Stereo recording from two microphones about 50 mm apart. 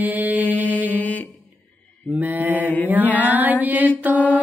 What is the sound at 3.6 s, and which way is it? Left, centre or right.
Mantra, right.